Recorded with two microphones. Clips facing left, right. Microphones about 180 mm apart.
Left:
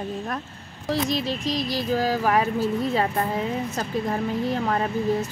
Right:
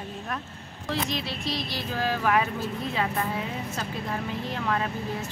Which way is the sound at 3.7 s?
40° left (ahead or behind).